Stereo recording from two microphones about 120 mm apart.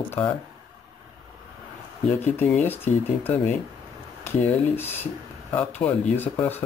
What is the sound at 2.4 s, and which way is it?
Speech, 15° left (ahead or behind).